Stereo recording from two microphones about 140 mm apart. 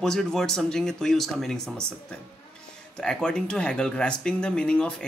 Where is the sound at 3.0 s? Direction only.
5° left (ahead or behind).